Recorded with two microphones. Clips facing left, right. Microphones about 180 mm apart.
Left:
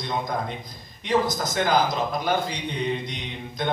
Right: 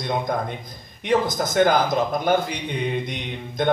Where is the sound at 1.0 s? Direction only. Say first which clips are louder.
Right 2 dB; 55° right (ahead or behind).